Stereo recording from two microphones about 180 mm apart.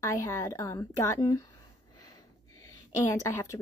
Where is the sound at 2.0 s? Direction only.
20° left (ahead or behind).